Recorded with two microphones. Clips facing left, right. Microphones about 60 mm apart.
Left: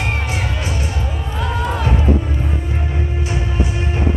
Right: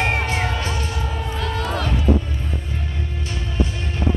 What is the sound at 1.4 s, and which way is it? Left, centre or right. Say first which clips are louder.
Music: left 4 dB; centre.